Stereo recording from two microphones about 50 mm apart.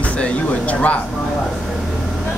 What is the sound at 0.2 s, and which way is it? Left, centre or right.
Speech, left.